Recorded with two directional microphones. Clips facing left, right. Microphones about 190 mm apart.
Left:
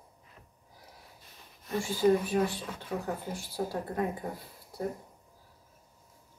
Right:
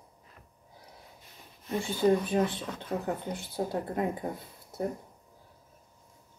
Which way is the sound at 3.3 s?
20° right (ahead or behind).